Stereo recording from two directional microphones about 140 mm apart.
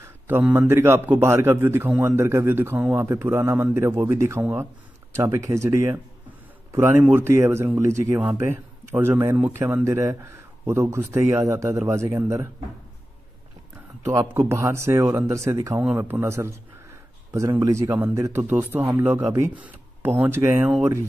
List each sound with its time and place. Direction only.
0.0 s a man's voice: 15° right (ahead or behind)
14.0 s a man's voice: 20° right (ahead or behind)